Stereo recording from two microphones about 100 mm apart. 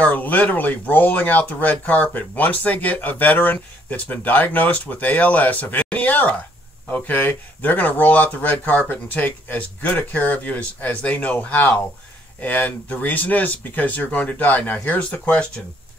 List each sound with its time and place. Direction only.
0.0 s speech: 15° left (ahead or behind)